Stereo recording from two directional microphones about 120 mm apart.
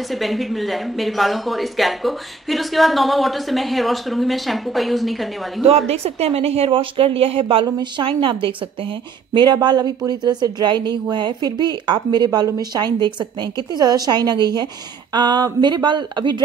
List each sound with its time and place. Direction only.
0.1 s speech: centre (ahead or behind)
5.6 s a woman's voice: 55° right (ahead or behind); by 16.4 s 40° right (ahead or behind)